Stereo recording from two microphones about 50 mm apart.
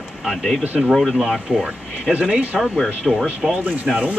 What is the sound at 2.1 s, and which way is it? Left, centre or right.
Speech, right.